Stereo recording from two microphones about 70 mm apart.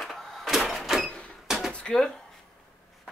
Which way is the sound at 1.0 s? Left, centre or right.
Centre.